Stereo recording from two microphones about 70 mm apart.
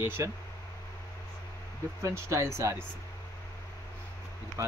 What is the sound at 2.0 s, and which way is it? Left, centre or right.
Speech, right.